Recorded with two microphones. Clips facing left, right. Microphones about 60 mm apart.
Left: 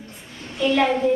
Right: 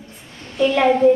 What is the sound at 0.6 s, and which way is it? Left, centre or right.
Speech, centre.